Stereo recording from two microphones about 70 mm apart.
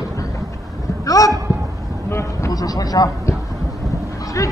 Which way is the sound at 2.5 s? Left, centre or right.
Left.